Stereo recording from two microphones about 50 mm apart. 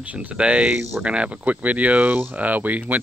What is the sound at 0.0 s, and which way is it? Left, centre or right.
Speech, right.